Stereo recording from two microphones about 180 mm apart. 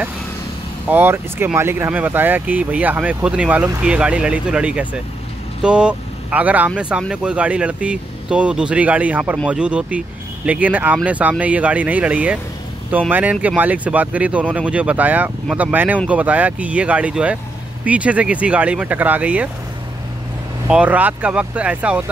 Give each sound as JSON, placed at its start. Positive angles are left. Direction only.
{"t": 0.8, "sound": "speech", "side_deg": -10}
{"t": 20.6, "sound": "speech", "side_deg": -10}